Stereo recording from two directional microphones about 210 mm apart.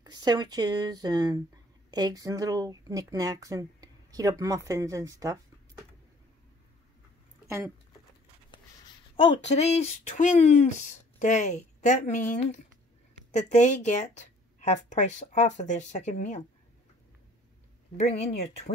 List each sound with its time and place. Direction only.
0.0 s speech: 20° right (ahead or behind)
9.1 s speech: 30° left (ahead or behind)
17.9 s speech: 30° left (ahead or behind)